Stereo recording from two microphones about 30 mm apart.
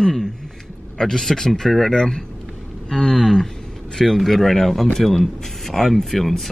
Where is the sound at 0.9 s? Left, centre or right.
Centre.